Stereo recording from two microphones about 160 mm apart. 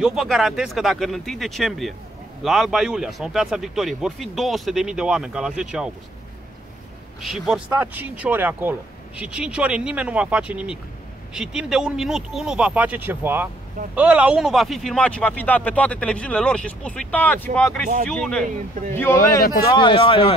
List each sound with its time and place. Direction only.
0.0 s speech: 5° right (ahead or behind)
7.2 s speech: centre (ahead or behind)
18.9 s speech: 15° left (ahead or behind)
19.7 s a man's voice: 30° left (ahead or behind)